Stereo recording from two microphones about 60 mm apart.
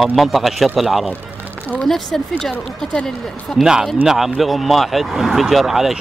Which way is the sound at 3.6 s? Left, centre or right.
Centre.